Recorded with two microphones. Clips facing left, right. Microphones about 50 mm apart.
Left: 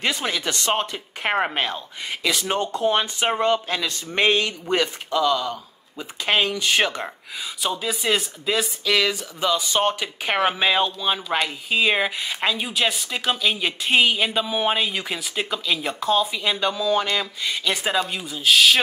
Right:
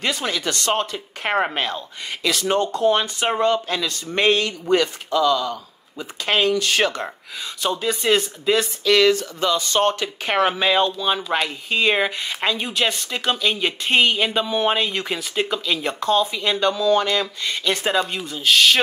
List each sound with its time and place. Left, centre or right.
0.0 s speech: centre
7.6 s speech: centre